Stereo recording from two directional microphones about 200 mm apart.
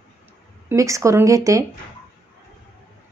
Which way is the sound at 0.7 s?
15° right (ahead or behind).